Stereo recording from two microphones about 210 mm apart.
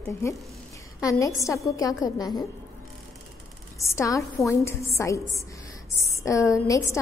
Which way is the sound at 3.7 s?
15° left (ahead or behind).